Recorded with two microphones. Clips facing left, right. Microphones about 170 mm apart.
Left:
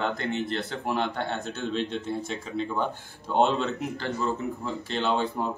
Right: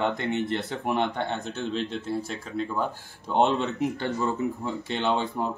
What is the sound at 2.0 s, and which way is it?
Speech, centre (ahead or behind).